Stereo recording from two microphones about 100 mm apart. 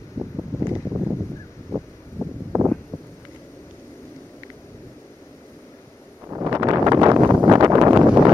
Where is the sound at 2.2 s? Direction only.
40° right (ahead or behind).